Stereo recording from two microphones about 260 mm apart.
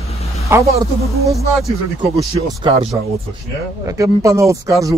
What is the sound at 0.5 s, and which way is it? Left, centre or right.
Speech, centre.